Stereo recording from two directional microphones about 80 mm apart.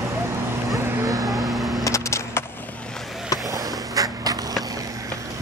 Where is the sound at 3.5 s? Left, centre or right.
Right.